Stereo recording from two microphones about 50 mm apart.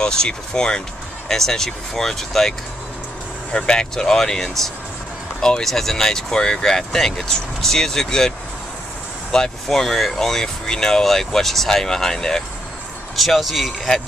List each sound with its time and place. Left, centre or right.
0.0 s speech: centre
3.5 s speech: centre
9.3 s speech: centre